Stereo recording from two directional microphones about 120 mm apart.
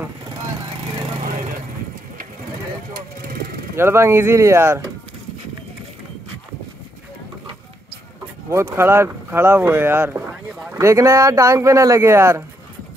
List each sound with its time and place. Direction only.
3.7 s speech: 20° right (ahead or behind)
8.5 s speech: 25° right (ahead or behind)